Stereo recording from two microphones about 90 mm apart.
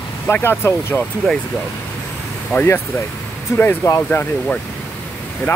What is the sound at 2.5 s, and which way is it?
Speech, 25° left (ahead or behind).